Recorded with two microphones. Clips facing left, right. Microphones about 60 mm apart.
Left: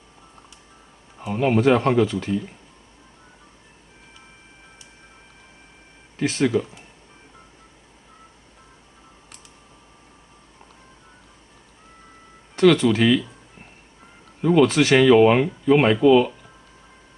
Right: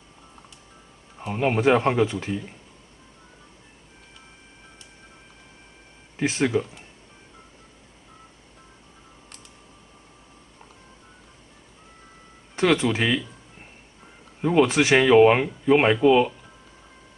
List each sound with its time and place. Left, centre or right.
1.1 s speech: centre
6.1 s speech: centre
12.5 s speech: centre